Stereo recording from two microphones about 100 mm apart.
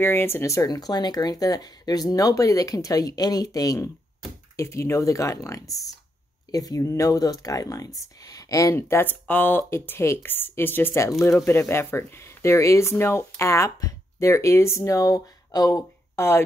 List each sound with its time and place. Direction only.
0.0 s speech: 25° left (ahead or behind)
8.7 s speech: 25° left (ahead or behind); by 15.8 s 40° left (ahead or behind)
16.2 s speech: 25° left (ahead or behind)